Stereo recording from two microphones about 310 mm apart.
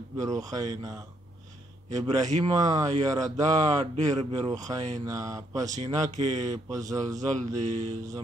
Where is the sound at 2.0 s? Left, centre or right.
Centre.